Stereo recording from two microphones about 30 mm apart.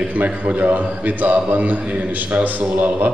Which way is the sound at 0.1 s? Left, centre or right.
Right.